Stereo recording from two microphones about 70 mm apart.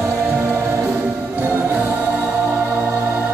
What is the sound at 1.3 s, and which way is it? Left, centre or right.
Music, right.